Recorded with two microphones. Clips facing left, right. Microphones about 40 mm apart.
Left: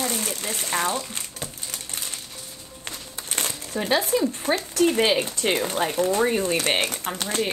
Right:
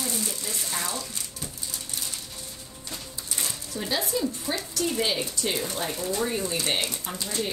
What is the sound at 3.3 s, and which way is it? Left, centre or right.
A woman's voice, left.